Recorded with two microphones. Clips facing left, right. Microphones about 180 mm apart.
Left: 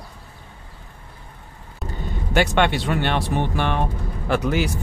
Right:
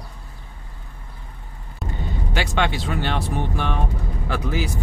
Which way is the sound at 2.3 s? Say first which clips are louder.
Left 5 dB; 55° left (ahead or behind).